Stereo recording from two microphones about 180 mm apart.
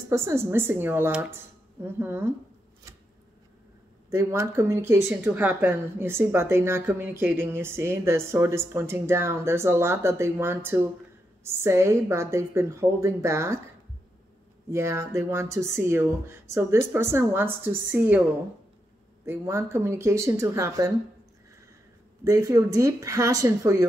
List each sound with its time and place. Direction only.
0.1 s speech: 15° right (ahead or behind)
4.1 s speech: 15° right (ahead or behind)
14.7 s speech: 15° right (ahead or behind)
19.2 s speech: 15° right (ahead or behind)
22.2 s speech: 20° right (ahead or behind)